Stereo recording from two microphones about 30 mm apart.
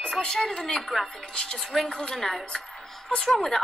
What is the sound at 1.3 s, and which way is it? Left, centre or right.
Speech, left.